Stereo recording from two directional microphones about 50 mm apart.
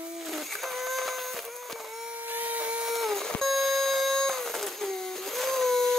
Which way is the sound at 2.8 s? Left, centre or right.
Centre.